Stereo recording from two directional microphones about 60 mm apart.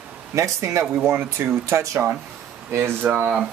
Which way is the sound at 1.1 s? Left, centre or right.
Right.